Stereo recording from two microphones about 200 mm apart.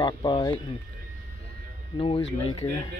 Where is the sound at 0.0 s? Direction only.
20° left (ahead or behind).